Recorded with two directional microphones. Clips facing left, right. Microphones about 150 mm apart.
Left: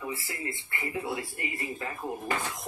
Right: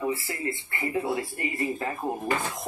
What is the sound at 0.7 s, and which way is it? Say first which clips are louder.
Speech: right 5 dB; 35° right (ahead or behind).